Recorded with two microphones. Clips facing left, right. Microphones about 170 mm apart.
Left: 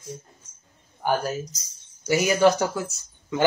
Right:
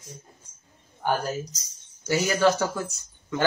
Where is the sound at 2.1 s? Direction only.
15° left (ahead or behind).